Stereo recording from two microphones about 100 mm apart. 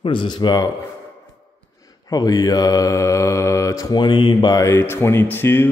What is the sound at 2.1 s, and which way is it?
Mantra, 40° left (ahead or behind).